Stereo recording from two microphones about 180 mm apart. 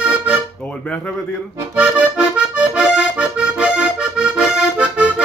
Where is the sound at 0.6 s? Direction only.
5° left (ahead or behind).